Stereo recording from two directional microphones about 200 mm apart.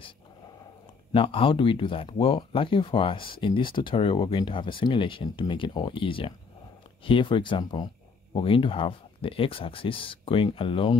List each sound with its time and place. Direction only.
1.1 s speech: 25° left (ahead or behind)